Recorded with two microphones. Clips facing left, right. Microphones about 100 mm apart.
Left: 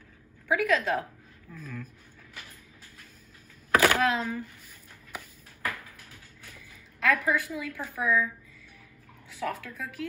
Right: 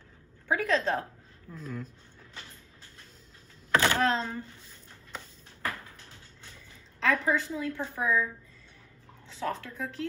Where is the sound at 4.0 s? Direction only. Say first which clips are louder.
Left 1 dB; 30° right (ahead or behind).